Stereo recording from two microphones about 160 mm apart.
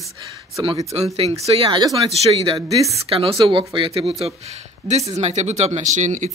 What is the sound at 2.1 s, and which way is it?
Speech, 40° right (ahead or behind).